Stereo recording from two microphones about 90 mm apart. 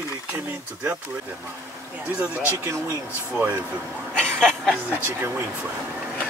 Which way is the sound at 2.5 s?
35° right (ahead or behind).